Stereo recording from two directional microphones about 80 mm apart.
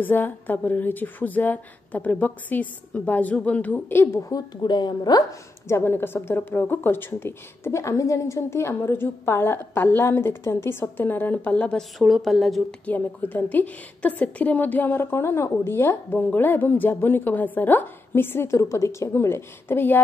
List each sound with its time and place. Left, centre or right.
0.0 s a woman's voice: left
3.9 s a woman's voice: left
4.6 s a woman's voice: left
5.7 s a woman's voice: left
12.0 s speech: centre
12.8 s a woman's voice: left